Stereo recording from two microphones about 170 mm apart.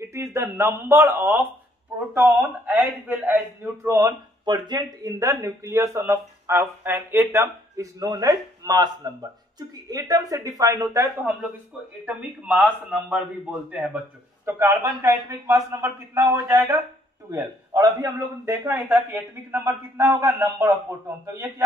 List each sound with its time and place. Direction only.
0.0 s a man's voice: 15° right (ahead or behind)